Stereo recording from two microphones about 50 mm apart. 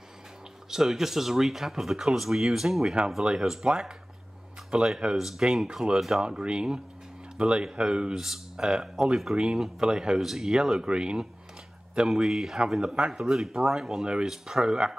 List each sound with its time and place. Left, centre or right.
0.7 s speech: centre
3.6 s speech: right
5.1 s speech: centre
6.4 s speech: centre
8.2 s speech: centre
10.2 s speech: centre
12.1 s speech: centre
14.0 s speech: centre
14.3 s speech: centre